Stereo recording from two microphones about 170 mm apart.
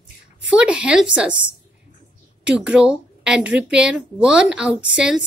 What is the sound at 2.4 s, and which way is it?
A woman's voice, 5° right (ahead or behind).